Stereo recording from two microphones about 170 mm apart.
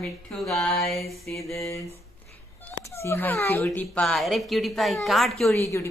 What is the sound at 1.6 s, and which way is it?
A woman's voice, 20° left (ahead or behind).